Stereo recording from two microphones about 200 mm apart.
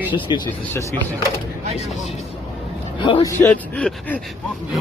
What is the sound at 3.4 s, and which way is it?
Speech, 10° left (ahead or behind).